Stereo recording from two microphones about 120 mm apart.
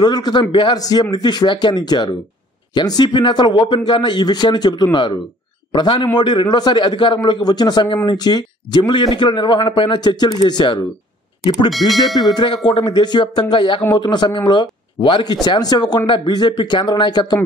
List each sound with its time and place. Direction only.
0.0 s a man's voice: 35° left (ahead or behind)
15.4 s a man's voice: 35° left (ahead or behind)